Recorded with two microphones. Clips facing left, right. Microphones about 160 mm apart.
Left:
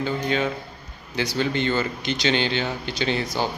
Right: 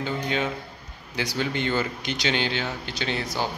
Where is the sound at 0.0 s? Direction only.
15° right (ahead or behind).